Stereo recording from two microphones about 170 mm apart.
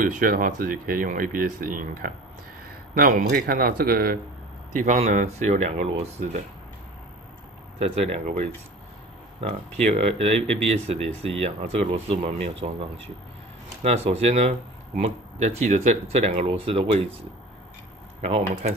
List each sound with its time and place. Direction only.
0.0 s a man's voice: 55° right (ahead or behind)
4.7 s speech: 45° right (ahead or behind)
7.8 s speech: 40° right (ahead or behind)
13.8 s speech: 40° right (ahead or behind)
18.2 s speech: 40° right (ahead or behind)